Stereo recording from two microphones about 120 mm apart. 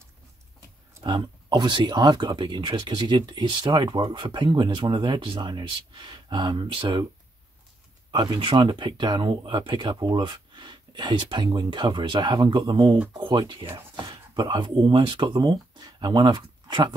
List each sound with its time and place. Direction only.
1.0 s speech: 40° right (ahead or behind)
8.1 s speech: 40° right (ahead or behind)